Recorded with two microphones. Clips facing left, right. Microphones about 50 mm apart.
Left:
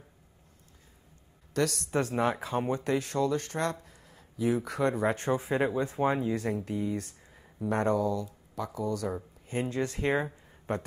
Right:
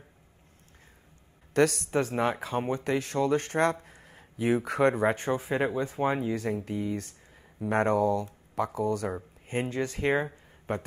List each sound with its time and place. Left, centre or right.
1.5 s speech: right
2.0 s speech: centre
3.3 s speech: right
5.1 s speech: centre
7.7 s speech: right
9.1 s speech: right
9.7 s speech: centre